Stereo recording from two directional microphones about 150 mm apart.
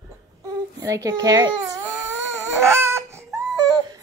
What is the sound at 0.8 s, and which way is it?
Speech, 20° right (ahead or behind).